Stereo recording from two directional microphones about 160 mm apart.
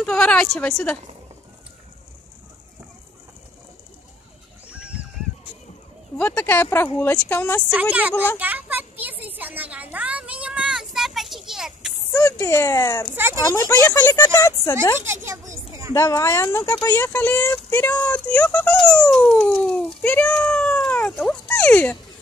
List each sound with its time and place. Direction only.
0.0 s a woman's voice: 5° left (ahead or behind)
4.6 s a sound: 5° right (ahead or behind)
6.1 s speech: 10° left (ahead or behind)
7.7 s a woman's voice: 10° right (ahead or behind)
8.4 s a sound: 10° right (ahead or behind)
12.1 s speech: 15° left (ahead or behind)
13.1 s a woman's voice: 15° right (ahead or behind)
13.4 s speech: 20° left (ahead or behind)
15.0 s a sound: 15° right (ahead or behind)
15.9 s speech: 20° left (ahead or behind)
16.9 s speech: 10° left (ahead or behind)